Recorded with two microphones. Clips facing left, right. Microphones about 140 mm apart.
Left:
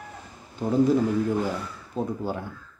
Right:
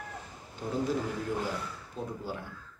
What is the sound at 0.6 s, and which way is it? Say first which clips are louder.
Speech: left 10 dB; 55° left (ahead or behind).